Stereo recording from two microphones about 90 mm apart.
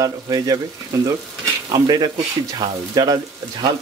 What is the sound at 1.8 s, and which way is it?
Speech, 45° right (ahead or behind).